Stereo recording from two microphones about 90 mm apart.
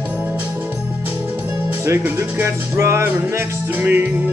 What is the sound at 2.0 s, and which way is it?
Music, 25° right (ahead or behind).